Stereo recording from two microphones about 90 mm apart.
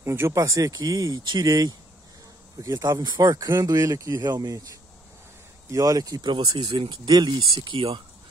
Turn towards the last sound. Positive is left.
turn(degrees=-55)  # may be behind; listen again after turning